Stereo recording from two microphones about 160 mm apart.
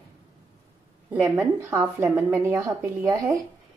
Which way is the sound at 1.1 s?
15° right (ahead or behind).